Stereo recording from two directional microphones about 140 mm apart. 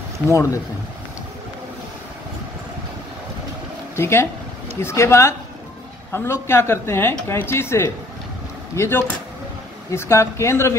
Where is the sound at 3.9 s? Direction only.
20° left (ahead or behind).